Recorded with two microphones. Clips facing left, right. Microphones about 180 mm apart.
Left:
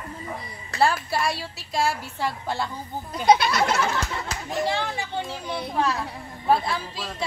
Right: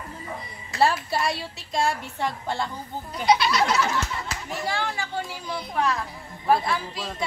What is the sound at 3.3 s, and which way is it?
Goat, 50° left (ahead or behind).